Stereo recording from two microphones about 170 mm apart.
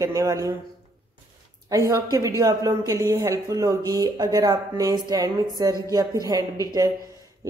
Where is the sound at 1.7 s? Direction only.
20° right (ahead or behind).